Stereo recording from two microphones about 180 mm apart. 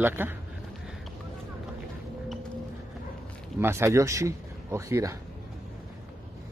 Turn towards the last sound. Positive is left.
turn(degrees=-15)  # may be behind; listen again after turning